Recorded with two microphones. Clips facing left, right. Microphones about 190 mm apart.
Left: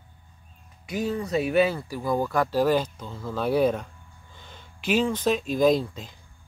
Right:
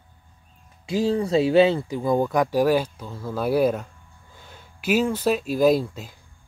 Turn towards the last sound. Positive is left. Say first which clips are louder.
# right 2 dB
turn(degrees=-5)  # may be behind; listen again after turning